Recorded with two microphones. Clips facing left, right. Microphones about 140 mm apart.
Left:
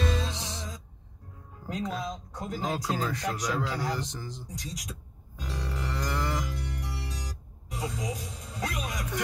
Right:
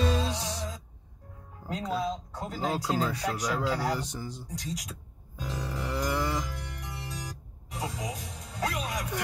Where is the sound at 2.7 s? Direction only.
10° right (ahead or behind).